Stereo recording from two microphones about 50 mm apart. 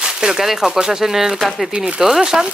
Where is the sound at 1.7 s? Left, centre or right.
Centre.